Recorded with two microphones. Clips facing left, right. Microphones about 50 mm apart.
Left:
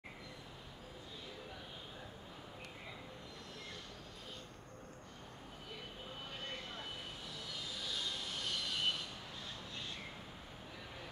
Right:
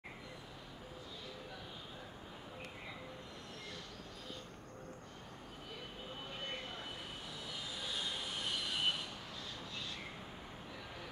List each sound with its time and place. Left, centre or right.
7.7 s vehicle: centre